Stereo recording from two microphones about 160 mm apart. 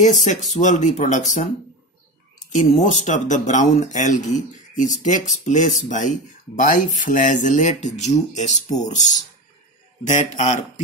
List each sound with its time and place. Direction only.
0.0 s speech: 50° left (ahead or behind)